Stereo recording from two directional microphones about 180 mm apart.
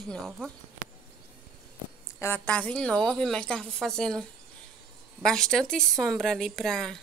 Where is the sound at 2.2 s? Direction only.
10° left (ahead or behind).